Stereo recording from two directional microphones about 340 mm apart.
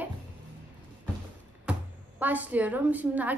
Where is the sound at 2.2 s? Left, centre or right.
Centre.